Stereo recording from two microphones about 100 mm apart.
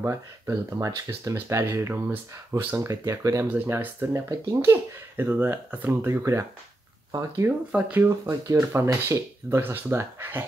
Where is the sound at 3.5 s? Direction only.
15° right (ahead or behind).